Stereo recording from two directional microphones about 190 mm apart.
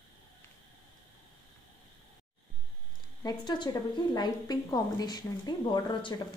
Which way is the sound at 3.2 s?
25° left (ahead or behind).